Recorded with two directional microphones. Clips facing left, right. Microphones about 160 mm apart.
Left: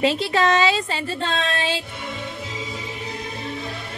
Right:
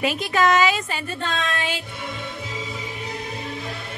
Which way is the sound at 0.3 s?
25° left (ahead or behind).